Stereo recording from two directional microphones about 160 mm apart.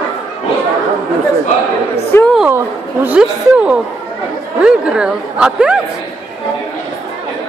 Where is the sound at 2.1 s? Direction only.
15° left (ahead or behind).